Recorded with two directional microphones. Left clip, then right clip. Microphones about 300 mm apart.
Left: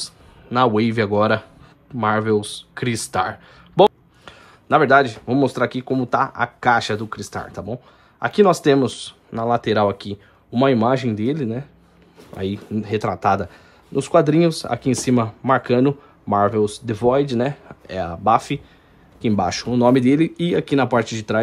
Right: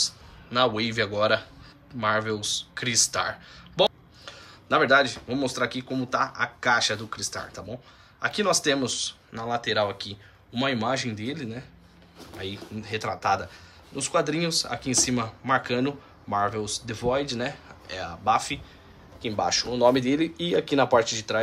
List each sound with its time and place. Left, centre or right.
0.0 s speech: centre